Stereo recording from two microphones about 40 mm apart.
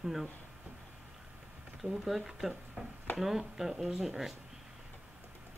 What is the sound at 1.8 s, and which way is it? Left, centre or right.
Speech, centre.